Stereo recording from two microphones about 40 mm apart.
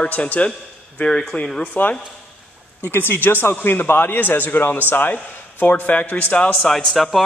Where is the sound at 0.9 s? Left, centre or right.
Left.